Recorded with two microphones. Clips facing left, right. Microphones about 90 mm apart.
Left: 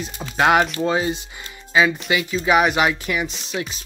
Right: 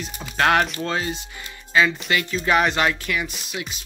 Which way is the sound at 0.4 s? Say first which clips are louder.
Left 3 dB; 15° left (ahead or behind).